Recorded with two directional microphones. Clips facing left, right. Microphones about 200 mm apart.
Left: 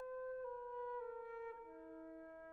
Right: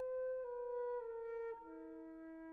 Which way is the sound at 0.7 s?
20° right (ahead or behind).